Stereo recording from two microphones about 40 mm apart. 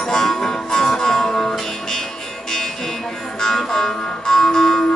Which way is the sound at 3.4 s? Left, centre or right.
Centre.